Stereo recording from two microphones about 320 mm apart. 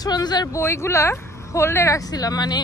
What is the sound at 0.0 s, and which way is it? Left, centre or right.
A woman's voice, centre.